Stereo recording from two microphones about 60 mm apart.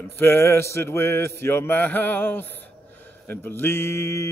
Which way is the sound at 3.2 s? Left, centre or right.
Left.